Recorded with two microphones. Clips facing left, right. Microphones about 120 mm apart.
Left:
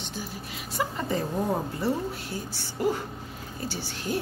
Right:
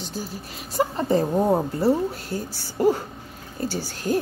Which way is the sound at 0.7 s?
35° right (ahead or behind).